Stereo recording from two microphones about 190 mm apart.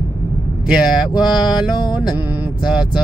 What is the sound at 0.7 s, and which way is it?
Music, 5° right (ahead or behind).